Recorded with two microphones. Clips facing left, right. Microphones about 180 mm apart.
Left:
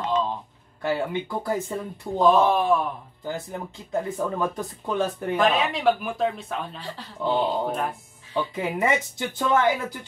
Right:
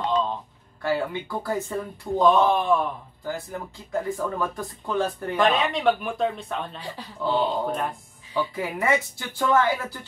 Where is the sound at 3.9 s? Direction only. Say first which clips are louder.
Even; 20° left (ahead or behind).